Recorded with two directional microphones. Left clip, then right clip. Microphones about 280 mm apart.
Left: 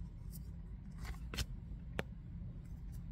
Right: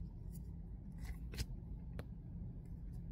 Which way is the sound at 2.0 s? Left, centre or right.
Centre.